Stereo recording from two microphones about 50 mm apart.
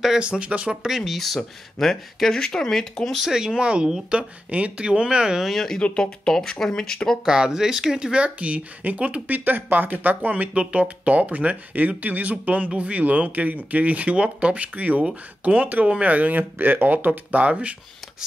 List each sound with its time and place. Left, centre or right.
0.2 s speech: right
0.8 s speech: centre
3.2 s speech: centre
5.4 s speech: centre
5.8 s speech: left
6.0 s speech: centre
7.2 s speech: centre; by 10.5 s right
10.5 s speech: right